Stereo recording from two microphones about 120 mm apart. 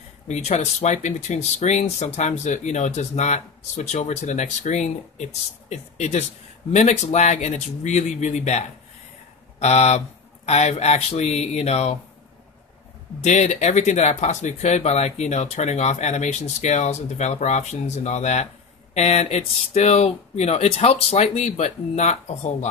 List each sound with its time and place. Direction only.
0.3 s speech: 70° left (ahead or behind)
13.2 s speech: 70° left (ahead or behind)